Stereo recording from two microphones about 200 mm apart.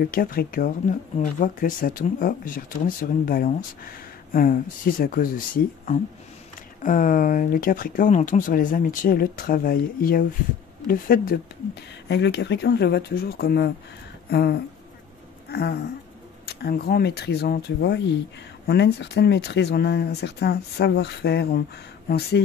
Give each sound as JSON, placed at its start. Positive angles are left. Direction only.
{"t": 0.0, "sound": "speech", "side_deg": 45}
{"t": 12.1, "sound": "speech", "side_deg": 60}